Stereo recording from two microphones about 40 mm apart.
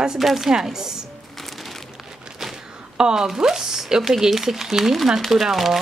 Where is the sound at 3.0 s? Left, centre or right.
Centre.